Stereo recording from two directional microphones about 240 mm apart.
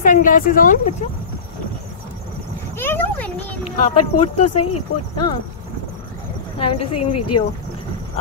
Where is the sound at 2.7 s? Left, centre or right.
Centre.